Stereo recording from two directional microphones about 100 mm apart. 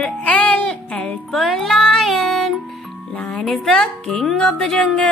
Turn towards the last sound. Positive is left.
turn(degrees=10)  # may be behind; listen again after turning